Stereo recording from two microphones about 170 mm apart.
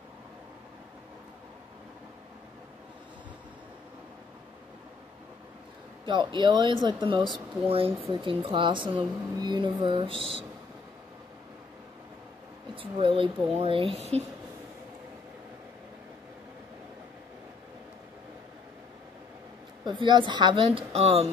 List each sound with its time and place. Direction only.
6.0 s speech: 25° right (ahead or behind)
12.7 s speech: 30° right (ahead or behind)
19.8 s speech: 25° right (ahead or behind)